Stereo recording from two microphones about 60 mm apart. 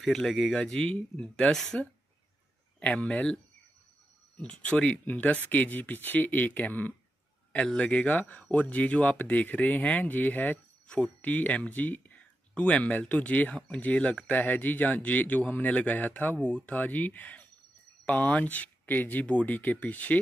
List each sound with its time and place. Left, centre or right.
0.0 s speech: centre
2.8 s speech: left
4.4 s speech: centre
7.6 s speech: centre